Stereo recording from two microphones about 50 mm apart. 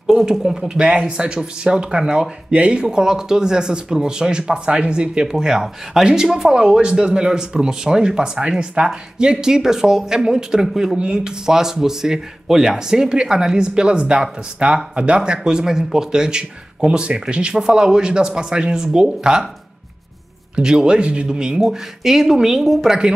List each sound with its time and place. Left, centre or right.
0.0 s speech: centre
20.5 s speech: centre